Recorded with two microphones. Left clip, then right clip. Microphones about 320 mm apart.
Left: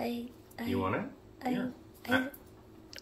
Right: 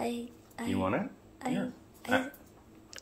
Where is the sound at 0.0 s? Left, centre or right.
Centre.